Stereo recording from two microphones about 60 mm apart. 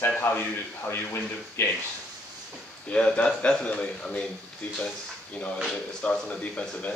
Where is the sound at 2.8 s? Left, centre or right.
Centre.